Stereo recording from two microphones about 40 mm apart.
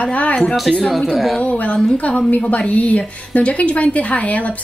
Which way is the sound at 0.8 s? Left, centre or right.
Centre.